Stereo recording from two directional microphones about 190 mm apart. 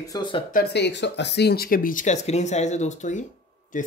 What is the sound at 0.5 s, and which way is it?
Speech, 60° left (ahead or behind).